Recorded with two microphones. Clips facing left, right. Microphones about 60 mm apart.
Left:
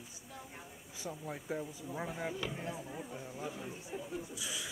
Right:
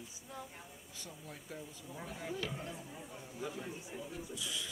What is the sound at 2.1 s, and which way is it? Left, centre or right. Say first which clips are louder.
Speech: right 2 dB; centre.